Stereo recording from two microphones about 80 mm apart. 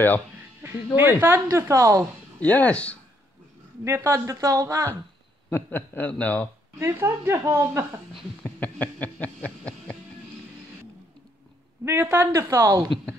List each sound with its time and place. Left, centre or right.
0.6 s a woman's voice: right
1.7 s speech: right
2.4 s speech: centre
3.8 s a woman's voice: right
4.1 s speech: right
5.5 s a man's voice: left
6.8 s speech: right
8.4 s music: centre
11.8 s a woman's voice: right
12.4 s speech: right